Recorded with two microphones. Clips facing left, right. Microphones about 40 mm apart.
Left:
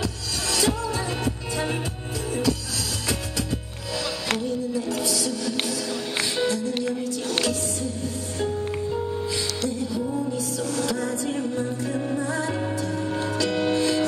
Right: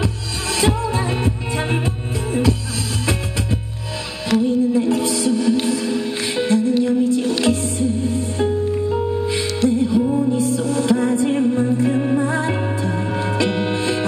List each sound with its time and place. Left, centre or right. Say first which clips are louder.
0.0 s music: right 5 dB; right
4.4 s music: right 10 dB; right